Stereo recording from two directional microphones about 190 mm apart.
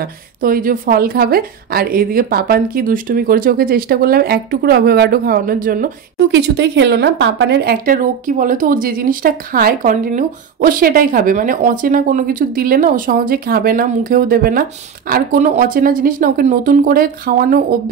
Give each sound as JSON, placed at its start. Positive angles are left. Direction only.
{"t": 0.4, "sound": "a woman's voice", "side_deg": -45}